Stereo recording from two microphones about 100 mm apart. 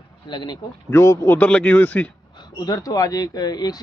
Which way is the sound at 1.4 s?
15° left (ahead or behind).